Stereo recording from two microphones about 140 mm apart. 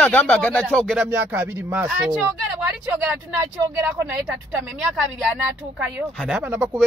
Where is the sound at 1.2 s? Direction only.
15° right (ahead or behind).